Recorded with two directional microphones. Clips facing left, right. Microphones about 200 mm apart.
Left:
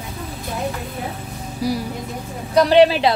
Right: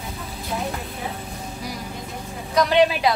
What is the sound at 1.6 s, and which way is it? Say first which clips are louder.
Speech: left 13 dB; 30° left (ahead or behind).